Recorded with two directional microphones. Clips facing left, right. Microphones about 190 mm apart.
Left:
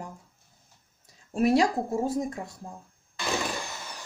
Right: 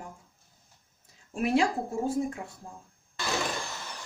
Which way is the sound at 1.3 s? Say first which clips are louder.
Left 3 dB; 40° left (ahead or behind).